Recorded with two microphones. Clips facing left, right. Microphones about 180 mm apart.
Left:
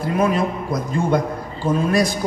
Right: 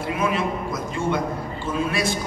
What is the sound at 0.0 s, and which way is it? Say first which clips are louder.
A man's voice: left 5 dB; 40° left (ahead or behind).